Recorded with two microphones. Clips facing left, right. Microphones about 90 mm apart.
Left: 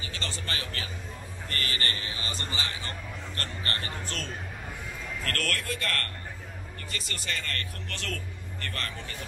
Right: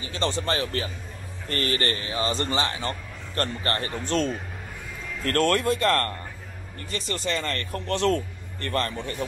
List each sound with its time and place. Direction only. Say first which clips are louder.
0.0 s speech: right 10 dB; 30° right (ahead or behind)